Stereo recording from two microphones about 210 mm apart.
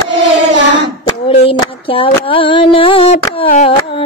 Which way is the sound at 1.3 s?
25° left (ahead or behind).